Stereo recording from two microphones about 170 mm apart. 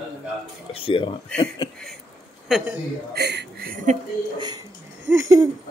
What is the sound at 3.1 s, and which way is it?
Speech, 75° right (ahead or behind).